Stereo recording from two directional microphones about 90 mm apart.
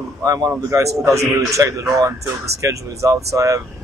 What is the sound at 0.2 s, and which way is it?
Speech, 40° right (ahead or behind).